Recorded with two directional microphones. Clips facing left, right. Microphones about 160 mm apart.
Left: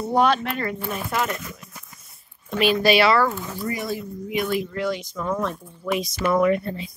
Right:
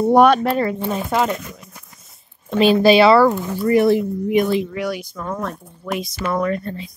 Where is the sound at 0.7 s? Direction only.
25° right (ahead or behind).